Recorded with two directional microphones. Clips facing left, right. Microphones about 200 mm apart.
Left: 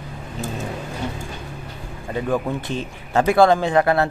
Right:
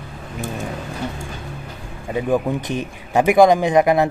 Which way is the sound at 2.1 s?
15° right (ahead or behind).